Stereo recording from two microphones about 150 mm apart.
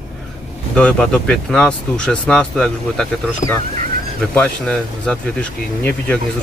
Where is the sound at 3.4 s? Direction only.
55° left (ahead or behind).